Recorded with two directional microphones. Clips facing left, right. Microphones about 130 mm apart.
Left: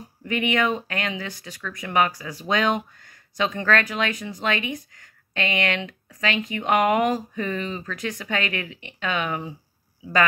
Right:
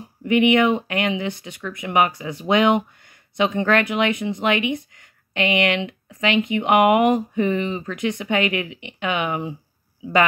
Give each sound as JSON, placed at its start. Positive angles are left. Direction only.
{"t": 0.2, "sound": "speech", "side_deg": -20}